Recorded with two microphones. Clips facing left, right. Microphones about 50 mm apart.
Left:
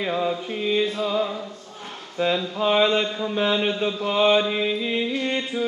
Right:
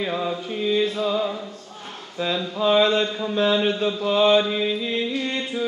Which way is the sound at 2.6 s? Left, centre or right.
Centre.